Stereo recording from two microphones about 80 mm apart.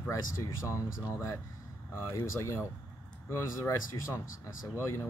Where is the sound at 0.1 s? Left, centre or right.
Left.